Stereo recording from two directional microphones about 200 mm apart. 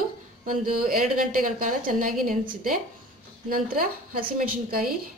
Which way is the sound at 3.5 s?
45° right (ahead or behind).